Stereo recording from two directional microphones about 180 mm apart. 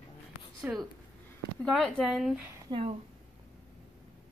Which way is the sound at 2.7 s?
35° right (ahead or behind).